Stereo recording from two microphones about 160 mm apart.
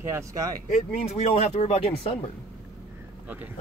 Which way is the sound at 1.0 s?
45° left (ahead or behind).